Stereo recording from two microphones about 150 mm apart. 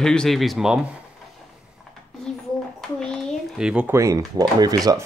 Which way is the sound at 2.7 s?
5° left (ahead or behind).